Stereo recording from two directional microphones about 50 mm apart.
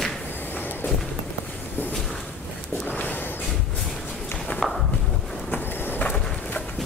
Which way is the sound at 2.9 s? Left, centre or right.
Left.